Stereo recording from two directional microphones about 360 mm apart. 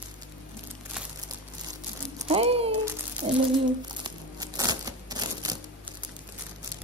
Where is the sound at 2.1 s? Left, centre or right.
Centre.